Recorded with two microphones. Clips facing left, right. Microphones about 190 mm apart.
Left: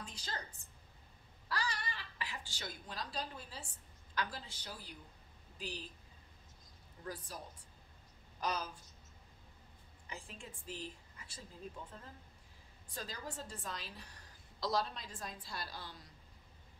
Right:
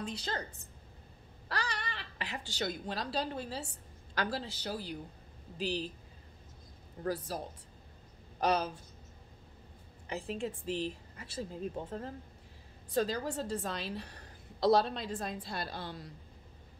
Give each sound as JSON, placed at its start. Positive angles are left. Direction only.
{"t": 0.0, "sound": "a woman's voice", "side_deg": -65}
{"t": 1.5, "sound": "a woman's voice", "side_deg": -65}
{"t": 7.0, "sound": "a woman's voice", "side_deg": -70}
{"t": 10.0, "sound": "a woman's voice", "side_deg": -70}